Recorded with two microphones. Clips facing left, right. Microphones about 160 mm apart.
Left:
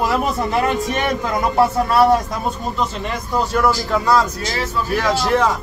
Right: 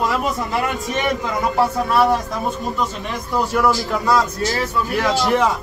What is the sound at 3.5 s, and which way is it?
A man's voice, 5° right (ahead or behind).